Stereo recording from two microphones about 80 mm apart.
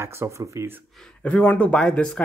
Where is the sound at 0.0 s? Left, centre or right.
Right.